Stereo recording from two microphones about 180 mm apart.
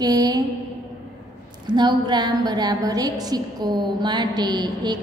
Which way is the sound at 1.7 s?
25° right (ahead or behind).